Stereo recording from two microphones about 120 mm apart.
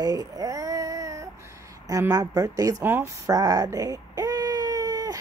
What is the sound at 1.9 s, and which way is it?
Speech, 30° right (ahead or behind).